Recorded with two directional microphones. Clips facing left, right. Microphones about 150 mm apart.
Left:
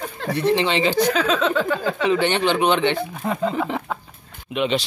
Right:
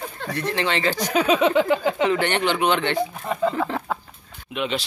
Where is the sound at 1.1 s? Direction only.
10° right (ahead or behind).